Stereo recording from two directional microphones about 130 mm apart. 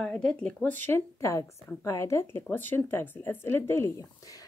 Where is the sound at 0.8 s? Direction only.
20° left (ahead or behind).